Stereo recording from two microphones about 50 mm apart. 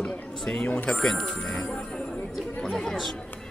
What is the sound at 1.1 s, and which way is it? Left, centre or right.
Speech, centre.